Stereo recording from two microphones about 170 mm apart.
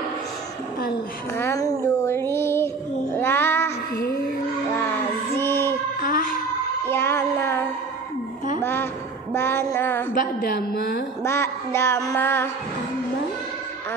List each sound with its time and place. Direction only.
1.4 s speech: 20° left (ahead or behind)
2.0 s child singing: 15° left (ahead or behind)
3.9 s child singing: 55° left (ahead or behind)
5.3 s music: 15° left (ahead or behind)
5.9 s music: 55° left (ahead or behind)
6.9 s child singing: 15° left (ahead or behind)
9.3 s a sound: 15° left (ahead or behind)
10.1 s a woman's voice: 65° left (ahead or behind)
11.2 s a sound: 15° left (ahead or behind)